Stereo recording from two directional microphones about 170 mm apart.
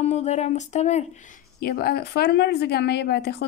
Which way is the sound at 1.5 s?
65° left (ahead or behind).